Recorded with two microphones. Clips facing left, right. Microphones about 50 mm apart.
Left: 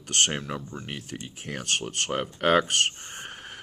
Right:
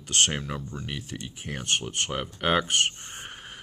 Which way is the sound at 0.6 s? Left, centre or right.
Left.